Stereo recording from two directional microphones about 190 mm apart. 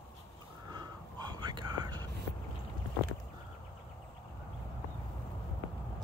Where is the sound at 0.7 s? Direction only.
20° right (ahead or behind).